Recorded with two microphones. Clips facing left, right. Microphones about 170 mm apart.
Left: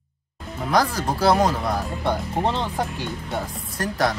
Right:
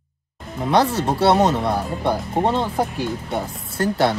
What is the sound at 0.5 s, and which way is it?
Speech, 25° right (ahead or behind).